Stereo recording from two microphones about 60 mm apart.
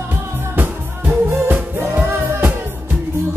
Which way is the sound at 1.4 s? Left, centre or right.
Right.